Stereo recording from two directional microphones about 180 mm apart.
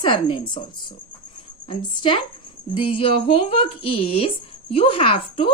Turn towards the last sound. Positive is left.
turn(degrees=30)  # may be behind; listen again after turning